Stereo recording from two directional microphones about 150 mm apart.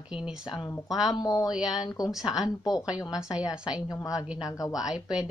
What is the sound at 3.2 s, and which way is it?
Speech, 5° right (ahead or behind).